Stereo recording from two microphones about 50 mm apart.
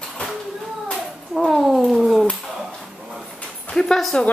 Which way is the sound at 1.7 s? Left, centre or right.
Centre.